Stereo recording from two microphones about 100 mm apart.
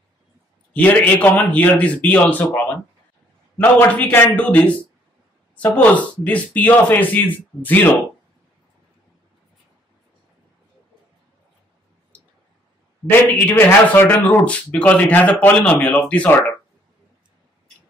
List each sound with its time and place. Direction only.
0.7 s speech: 15° left (ahead or behind)
13.0 s speech: 15° left (ahead or behind)